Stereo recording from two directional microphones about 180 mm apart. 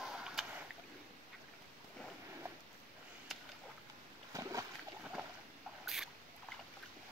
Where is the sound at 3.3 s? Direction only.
Centre (ahead or behind).